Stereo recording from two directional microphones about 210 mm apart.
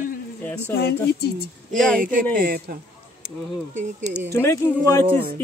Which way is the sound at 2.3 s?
45° right (ahead or behind).